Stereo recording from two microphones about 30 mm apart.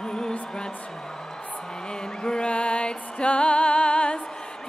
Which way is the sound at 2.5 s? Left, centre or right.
Left.